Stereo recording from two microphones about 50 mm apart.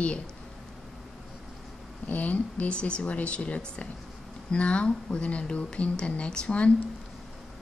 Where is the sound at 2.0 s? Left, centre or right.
Left.